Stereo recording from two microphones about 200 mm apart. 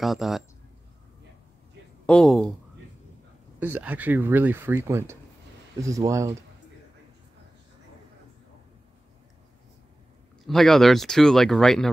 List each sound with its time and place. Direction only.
0.0 s speech: centre (ahead or behind)
2.0 s speech: 5° left (ahead or behind)
3.5 s speech: 10° right (ahead or behind)
10.4 s speech: centre (ahead or behind)